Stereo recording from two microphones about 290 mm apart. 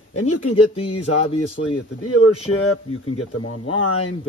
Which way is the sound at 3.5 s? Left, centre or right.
Left.